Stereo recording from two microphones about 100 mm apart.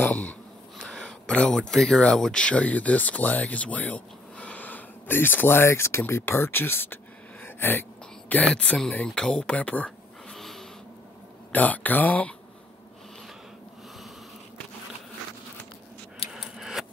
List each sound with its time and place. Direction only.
0.0 s speech: 15° left (ahead or behind)
7.4 s a sound: 20° left (ahead or behind)
8.3 s speech: 15° left (ahead or behind)
11.5 s speech: 15° left (ahead or behind)
16.3 s scissors: 5° right (ahead or behind)